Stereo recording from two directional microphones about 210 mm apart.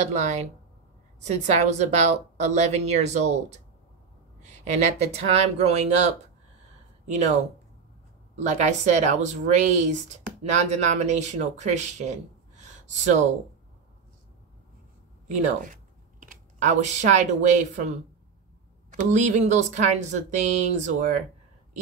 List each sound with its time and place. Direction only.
0.1 s a woman's voice: 35° right (ahead or behind)
8.4 s a woman's voice: 35° right (ahead or behind)
15.4 s a woman's voice: 40° right (ahead or behind)